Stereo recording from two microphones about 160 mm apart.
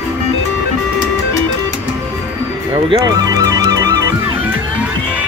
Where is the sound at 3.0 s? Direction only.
20° right (ahead or behind).